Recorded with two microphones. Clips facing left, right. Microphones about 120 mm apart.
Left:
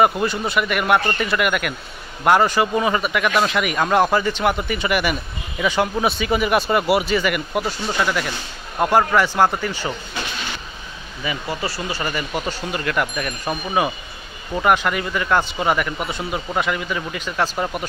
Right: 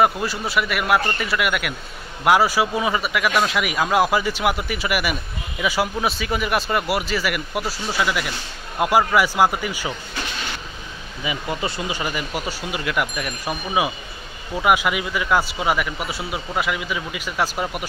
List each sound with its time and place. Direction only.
0.0 s speech: centre (ahead or behind)
11.2 s speech: 20° right (ahead or behind)
12.0 s speech: 10° right (ahead or behind)